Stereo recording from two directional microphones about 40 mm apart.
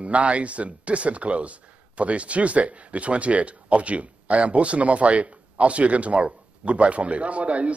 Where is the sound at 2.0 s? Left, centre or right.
Right.